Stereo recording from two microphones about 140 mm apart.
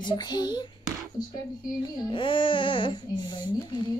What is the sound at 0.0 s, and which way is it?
Speech, 30° left (ahead or behind).